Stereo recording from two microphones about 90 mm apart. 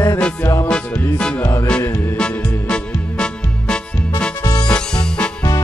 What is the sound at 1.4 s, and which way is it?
Music, 35° left (ahead or behind).